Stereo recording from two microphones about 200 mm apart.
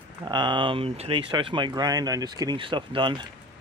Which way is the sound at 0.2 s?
20° right (ahead or behind).